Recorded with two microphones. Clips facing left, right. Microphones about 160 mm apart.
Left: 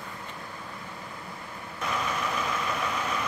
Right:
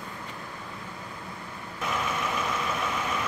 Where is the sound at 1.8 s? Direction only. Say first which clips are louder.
Even; centre (ahead or behind).